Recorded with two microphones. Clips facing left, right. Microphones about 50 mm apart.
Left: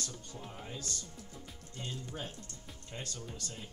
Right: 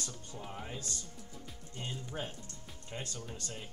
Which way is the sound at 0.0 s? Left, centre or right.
Centre.